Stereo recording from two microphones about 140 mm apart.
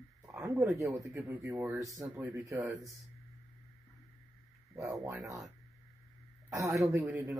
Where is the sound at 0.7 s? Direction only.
20° right (ahead or behind).